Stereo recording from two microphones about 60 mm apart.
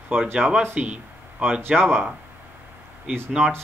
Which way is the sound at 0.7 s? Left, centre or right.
Right.